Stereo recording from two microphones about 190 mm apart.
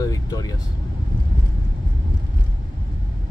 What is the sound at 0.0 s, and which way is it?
Vehicle, 20° left (ahead or behind).